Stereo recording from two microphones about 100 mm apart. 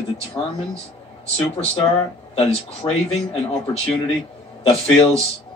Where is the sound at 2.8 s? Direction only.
40° left (ahead or behind).